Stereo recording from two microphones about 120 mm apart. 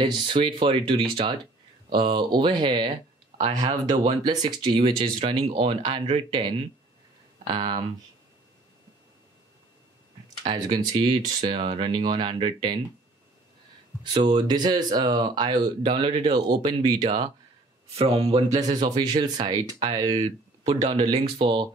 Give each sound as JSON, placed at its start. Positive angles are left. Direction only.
{"t": 0.0, "sound": "speech", "side_deg": -40}
{"t": 4.8, "sound": "speech", "side_deg": -50}
{"t": 7.5, "sound": "speech", "side_deg": -45}
{"t": 10.4, "sound": "speech", "side_deg": -45}
{"t": 14.0, "sound": "speech", "side_deg": -40}
{"t": 16.4, "sound": "speech", "side_deg": -40}
{"t": 17.9, "sound": "speech", "side_deg": -55}
{"t": 18.5, "sound": "speech", "side_deg": -35}
{"t": 20.2, "sound": "speech", "side_deg": -65}